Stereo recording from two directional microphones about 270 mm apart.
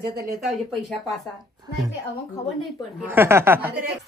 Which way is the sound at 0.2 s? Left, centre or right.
Right.